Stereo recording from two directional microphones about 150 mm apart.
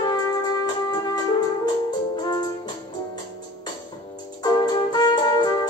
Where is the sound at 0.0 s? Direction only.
25° left (ahead or behind).